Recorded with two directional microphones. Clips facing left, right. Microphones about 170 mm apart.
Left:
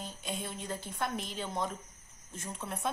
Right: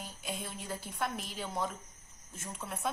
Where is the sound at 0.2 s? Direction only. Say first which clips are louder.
Left 1 dB; centre (ahead or behind).